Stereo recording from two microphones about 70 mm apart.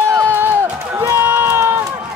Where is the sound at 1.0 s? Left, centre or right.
Right.